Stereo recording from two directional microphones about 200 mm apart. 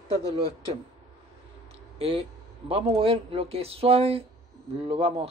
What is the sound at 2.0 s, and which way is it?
Speech, 30° right (ahead or behind).